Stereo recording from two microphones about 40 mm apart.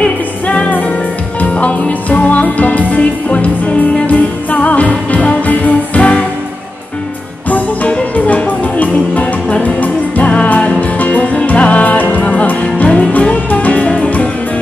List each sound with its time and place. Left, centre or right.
0.0 s music: left
7.4 s music: left